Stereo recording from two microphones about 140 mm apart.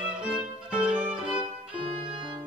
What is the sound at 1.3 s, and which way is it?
Violin, 40° right (ahead or behind).